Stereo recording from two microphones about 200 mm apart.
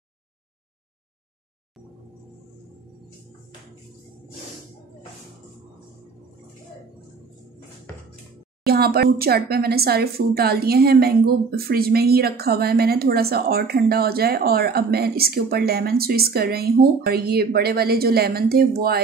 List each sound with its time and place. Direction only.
8.6 s speech: 50° right (ahead or behind)